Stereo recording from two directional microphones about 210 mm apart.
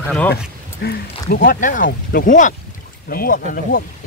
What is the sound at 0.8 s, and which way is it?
Speech, 50° left (ahead or behind).